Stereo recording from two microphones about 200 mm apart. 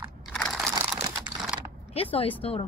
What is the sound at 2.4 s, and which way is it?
Speech, 25° left (ahead or behind).